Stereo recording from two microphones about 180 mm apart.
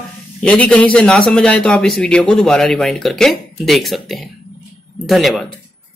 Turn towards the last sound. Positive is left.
turn(degrees=0)  # may be behind; listen again after turning